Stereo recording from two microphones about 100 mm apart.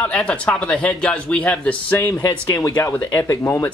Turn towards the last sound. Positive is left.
turn(degrees=30)  # may be behind; listen again after turning